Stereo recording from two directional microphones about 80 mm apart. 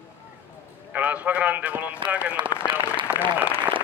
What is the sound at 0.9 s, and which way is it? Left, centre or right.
A man's voice, centre.